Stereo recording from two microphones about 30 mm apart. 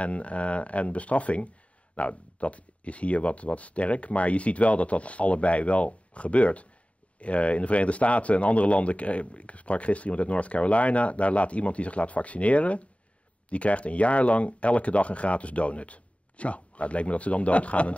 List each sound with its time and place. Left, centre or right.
0.0 s speech: left